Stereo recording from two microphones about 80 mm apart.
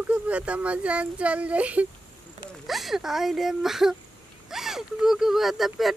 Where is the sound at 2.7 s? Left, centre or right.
Centre.